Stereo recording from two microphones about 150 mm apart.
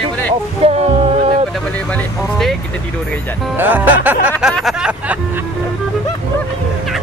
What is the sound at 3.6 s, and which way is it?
Speech, 10° right (ahead or behind).